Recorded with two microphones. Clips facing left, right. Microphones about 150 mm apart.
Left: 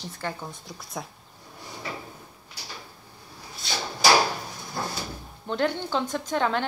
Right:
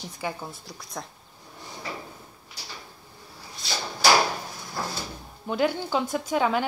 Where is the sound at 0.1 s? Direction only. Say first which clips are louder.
Right 2 dB; 10° right (ahead or behind).